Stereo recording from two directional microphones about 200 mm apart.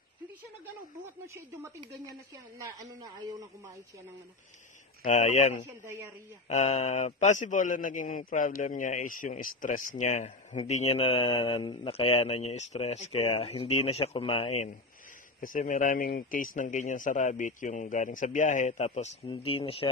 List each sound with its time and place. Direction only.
1.0 s a man's voice: 15° right (ahead or behind)
2.8 s a man's voice: 20° right (ahead or behind)
5.0 s speech: 35° left (ahead or behind)
15.4 s speech: 40° left (ahead or behind)